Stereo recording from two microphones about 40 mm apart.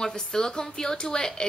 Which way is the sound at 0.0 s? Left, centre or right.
Centre.